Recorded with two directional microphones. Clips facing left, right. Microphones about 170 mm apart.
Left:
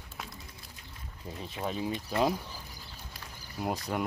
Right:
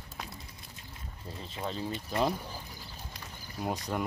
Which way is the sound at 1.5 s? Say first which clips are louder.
Left 2 dB; 10° left (ahead or behind).